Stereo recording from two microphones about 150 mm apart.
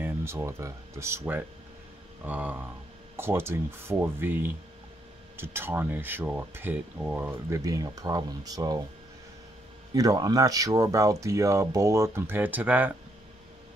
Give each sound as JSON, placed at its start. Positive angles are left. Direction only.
{"t": 0.0, "sound": "speech", "side_deg": -15}
{"t": 9.9, "sound": "speech", "side_deg": -25}